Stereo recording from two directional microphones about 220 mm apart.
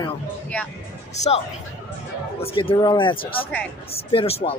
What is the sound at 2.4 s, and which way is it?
Speech, 25° left (ahead or behind).